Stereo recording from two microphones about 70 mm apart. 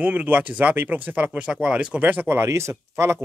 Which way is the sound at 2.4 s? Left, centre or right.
Right.